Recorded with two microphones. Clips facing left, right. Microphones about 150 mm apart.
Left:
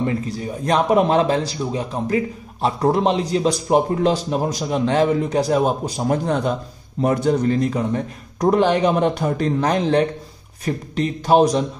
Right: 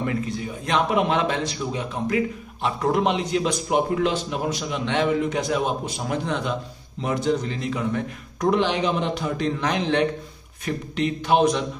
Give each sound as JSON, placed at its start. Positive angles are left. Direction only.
{"t": 0.0, "sound": "a man's voice", "side_deg": 35}